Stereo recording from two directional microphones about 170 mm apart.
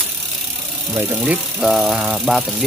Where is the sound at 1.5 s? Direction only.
Centre (ahead or behind).